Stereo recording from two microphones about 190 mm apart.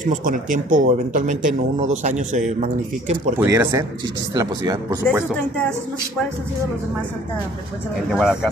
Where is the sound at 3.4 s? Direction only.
15° right (ahead or behind).